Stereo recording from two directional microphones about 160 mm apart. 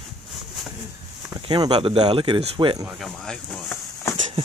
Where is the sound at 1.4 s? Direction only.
30° right (ahead or behind).